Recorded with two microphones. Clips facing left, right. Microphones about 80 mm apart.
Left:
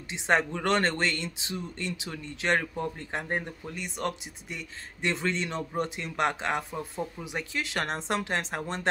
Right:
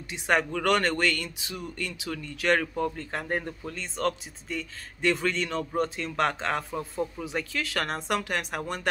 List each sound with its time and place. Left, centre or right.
0.1 s speech: left